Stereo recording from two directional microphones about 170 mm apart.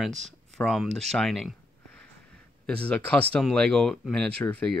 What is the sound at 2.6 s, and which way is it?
Speech, 10° left (ahead or behind).